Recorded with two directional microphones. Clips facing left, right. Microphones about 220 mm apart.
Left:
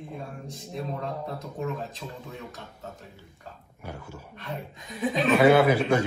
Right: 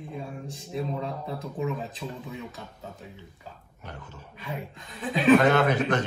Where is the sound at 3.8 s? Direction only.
10° left (ahead or behind).